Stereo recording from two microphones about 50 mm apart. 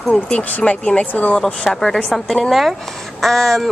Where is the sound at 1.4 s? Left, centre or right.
Centre.